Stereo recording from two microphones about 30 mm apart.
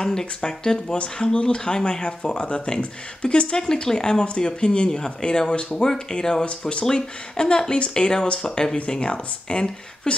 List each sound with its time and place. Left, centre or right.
0.0 s speech: left
1.3 s speech: left
6.4 s speech: left